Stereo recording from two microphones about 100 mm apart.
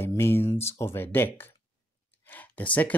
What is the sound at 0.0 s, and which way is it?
Speech, 25° left (ahead or behind).